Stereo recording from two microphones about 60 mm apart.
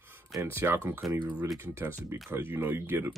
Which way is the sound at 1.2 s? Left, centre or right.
Right.